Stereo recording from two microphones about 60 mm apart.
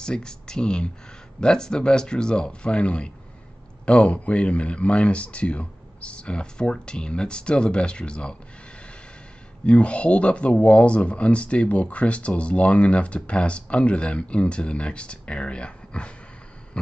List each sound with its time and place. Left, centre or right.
0.0 s speech: centre
9.7 s speech: left
16.8 s a sound: centre